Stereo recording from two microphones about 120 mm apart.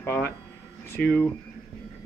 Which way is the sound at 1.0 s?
5° left (ahead or behind).